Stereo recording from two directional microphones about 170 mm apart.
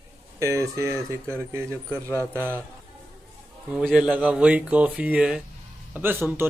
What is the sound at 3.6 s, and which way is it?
Speech, 5° right (ahead or behind).